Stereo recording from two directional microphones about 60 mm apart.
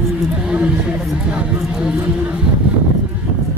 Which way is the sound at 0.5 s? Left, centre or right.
Centre.